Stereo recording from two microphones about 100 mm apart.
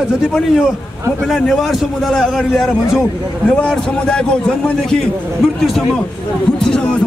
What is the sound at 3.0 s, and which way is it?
A man's voice, 15° left (ahead or behind).